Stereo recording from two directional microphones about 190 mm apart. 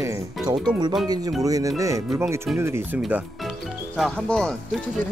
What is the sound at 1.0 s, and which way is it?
Speech, 20° right (ahead or behind).